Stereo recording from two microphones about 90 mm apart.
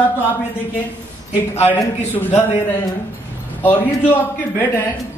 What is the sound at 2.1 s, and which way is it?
Speech, 20° left (ahead or behind).